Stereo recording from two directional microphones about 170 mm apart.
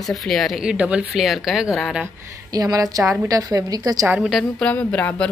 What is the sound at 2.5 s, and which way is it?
A woman's voice, 20° right (ahead or behind).